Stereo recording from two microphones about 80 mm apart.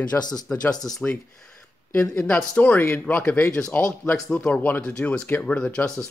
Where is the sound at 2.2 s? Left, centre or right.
Centre.